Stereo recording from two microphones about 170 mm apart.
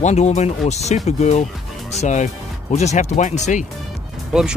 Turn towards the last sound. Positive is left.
turn(degrees=-5)  # may be behind; listen again after turning